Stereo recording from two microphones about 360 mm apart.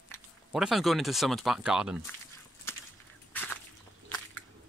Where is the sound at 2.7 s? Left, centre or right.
Centre.